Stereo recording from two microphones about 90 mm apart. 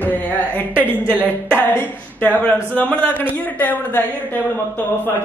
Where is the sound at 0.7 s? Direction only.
20° right (ahead or behind).